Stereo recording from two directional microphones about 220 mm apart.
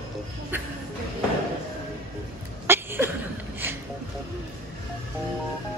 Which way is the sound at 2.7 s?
10° right (ahead or behind).